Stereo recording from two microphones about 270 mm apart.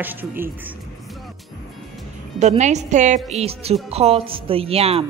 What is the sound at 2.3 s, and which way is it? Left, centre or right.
Speech, right.